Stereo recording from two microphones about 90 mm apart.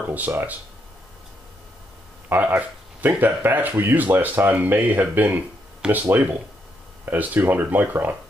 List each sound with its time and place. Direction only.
0.0 s speech: 20° right (ahead or behind)
2.2 s speech: 20° right (ahead or behind)